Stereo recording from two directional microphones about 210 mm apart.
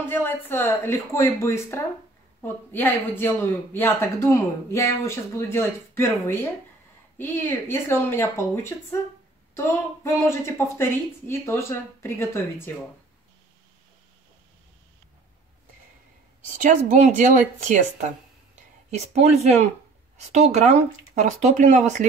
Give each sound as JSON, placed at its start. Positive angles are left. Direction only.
{"t": 0.0, "sound": "speech", "side_deg": 10}
{"t": 16.4, "sound": "speech", "side_deg": -40}
{"t": 18.9, "sound": "speech", "side_deg": -30}